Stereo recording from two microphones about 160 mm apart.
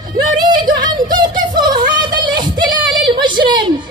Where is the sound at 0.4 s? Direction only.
30° right (ahead or behind).